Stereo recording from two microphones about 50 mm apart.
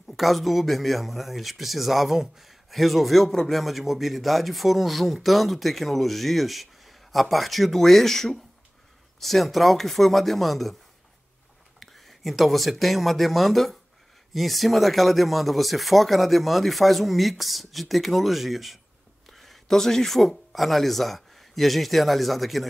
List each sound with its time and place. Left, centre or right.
0.0 s speech: centre
11.8 s speech: centre